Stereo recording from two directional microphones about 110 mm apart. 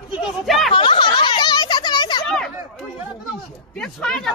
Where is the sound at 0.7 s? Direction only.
50° left (ahead or behind).